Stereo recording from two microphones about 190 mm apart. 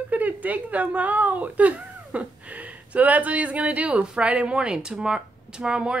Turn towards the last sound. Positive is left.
turn(degrees=-5)  # may be behind; listen again after turning